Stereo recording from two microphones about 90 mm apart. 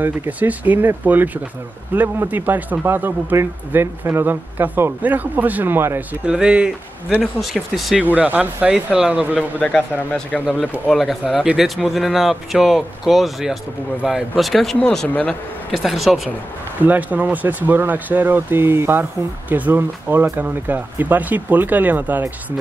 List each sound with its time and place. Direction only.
0.0 s speech: 20° right (ahead or behind)
6.2 s speech: 10° right (ahead or behind)
7.2 s speech: centre (ahead or behind)
8.0 s speech: 20° right (ahead or behind)
9.6 s speech: 10° left (ahead or behind); by 16.2 s 5° right (ahead or behind)
16.8 s speech: 20° right (ahead or behind)